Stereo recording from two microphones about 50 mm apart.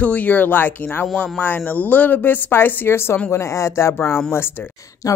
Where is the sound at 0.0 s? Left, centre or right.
Left.